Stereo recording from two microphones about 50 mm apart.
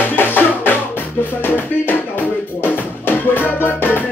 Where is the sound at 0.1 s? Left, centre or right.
Left.